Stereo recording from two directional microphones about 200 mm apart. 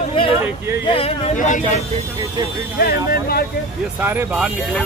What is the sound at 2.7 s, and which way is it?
Speech, 50° left (ahead or behind).